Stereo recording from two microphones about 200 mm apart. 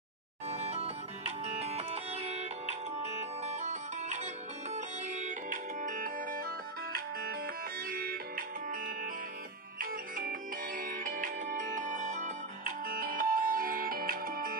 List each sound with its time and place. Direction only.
0.5 s music: 30° right (ahead or behind)